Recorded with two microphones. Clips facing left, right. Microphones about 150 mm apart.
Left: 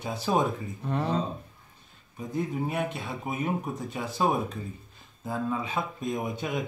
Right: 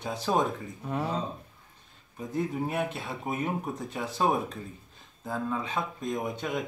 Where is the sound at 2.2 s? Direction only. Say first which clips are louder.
Even; centre (ahead or behind).